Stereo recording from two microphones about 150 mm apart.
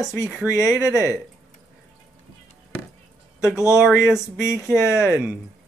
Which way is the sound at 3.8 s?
Centre (ahead or behind).